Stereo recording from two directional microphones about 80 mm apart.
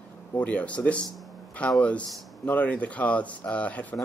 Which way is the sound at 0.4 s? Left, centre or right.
Centre.